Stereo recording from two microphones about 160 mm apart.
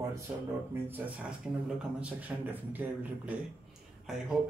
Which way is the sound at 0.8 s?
10° right (ahead or behind).